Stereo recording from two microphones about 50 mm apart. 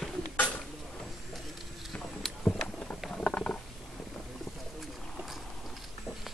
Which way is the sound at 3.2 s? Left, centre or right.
Left.